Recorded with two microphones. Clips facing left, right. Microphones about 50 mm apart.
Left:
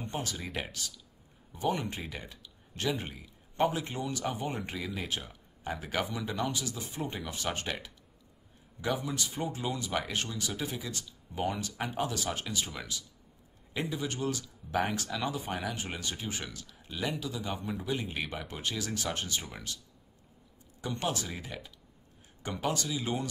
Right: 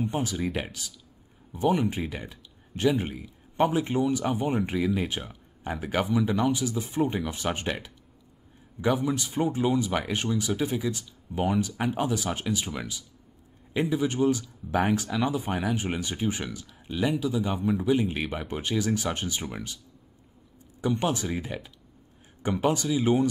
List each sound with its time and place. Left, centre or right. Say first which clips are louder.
0.0 s speech: right 9 dB; centre
20.8 s speech: right 7 dB; centre